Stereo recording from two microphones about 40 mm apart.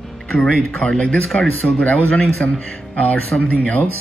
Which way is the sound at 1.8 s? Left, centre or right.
Left.